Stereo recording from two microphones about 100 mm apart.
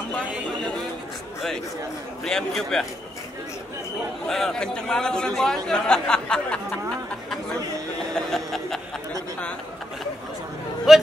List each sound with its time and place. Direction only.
2.2 s a man's voice: 5° left (ahead or behind)
4.3 s a man's voice: 5° left (ahead or behind)
8.3 s snicker: 5° left (ahead or behind)
10.9 s a sound: 5° right (ahead or behind)